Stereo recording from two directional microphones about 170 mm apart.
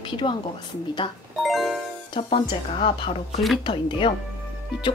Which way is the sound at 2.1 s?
35° left (ahead or behind).